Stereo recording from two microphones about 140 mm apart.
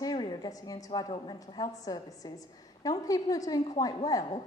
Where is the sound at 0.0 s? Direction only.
30° left (ahead or behind).